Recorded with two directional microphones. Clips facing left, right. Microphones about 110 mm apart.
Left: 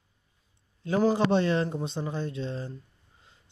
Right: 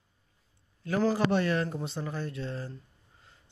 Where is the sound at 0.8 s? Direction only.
20° left (ahead or behind).